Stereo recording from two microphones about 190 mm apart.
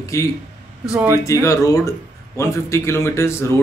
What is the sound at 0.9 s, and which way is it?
Speech, 15° right (ahead or behind).